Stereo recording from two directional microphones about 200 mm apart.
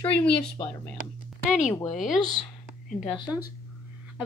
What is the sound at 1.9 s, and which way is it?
Speech, centre (ahead or behind).